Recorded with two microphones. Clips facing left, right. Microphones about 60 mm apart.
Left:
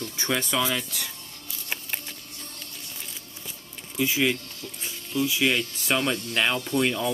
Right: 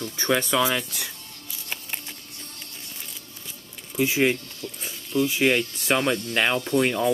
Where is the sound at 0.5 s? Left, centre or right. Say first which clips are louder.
Right 3 dB; centre.